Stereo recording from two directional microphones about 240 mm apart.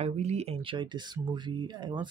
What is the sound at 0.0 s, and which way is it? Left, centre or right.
Speech, right.